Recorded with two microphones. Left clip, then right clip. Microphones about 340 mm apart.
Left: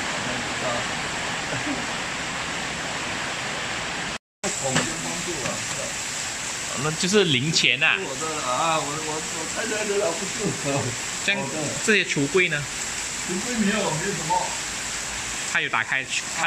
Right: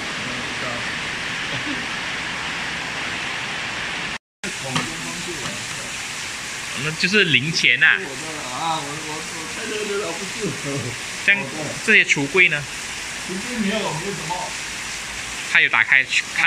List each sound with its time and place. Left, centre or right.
7.0 s speech: centre
11.9 s speech: centre
15.5 s speech: centre